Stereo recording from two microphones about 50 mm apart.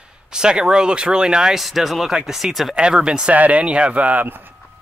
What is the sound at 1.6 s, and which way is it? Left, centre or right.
Speech, centre.